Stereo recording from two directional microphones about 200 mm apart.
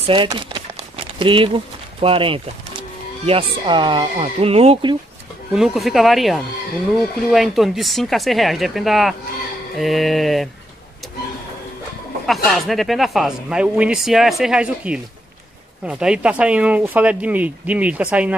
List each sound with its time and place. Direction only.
0.0 s speech: 25° right (ahead or behind)
5.5 s speech: centre (ahead or behind)
12.4 s speech: centre (ahead or behind)